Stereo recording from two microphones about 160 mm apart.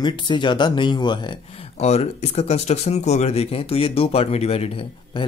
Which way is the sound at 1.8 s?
40° left (ahead or behind).